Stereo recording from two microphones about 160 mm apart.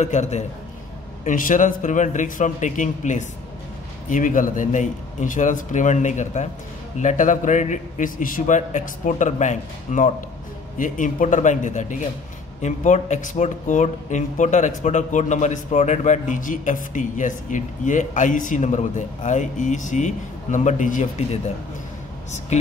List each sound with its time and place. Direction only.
0.0 s speech: 45° left (ahead or behind)
22.5 s speech: 45° left (ahead or behind)